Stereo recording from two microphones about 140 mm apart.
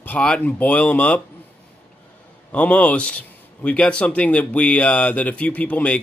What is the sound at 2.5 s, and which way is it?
Speech, 10° left (ahead or behind).